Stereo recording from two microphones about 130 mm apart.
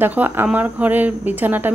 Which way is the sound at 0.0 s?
15° right (ahead or behind).